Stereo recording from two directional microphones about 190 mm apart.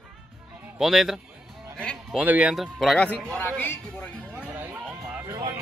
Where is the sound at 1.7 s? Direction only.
5° left (ahead or behind).